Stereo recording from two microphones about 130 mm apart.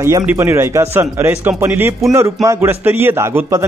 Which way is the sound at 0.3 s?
20° right (ahead or behind).